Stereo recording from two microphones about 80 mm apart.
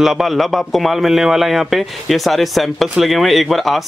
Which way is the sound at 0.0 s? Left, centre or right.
Centre.